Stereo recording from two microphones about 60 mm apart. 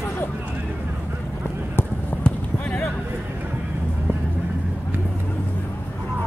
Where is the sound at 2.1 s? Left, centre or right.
Left.